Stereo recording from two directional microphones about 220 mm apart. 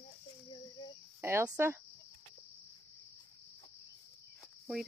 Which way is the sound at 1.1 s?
10° right (ahead or behind).